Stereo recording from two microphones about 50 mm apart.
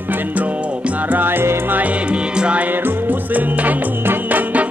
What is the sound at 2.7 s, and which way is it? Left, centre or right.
Music, right.